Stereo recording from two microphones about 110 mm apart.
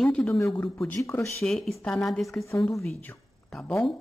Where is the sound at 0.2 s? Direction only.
25° left (ahead or behind).